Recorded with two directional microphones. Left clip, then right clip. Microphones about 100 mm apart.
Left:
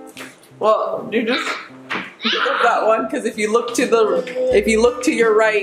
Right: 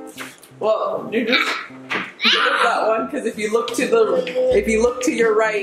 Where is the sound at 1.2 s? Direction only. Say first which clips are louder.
Right 6 dB; 20° right (ahead or behind).